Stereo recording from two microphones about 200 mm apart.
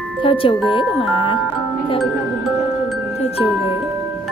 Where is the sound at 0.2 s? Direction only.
25° left (ahead or behind).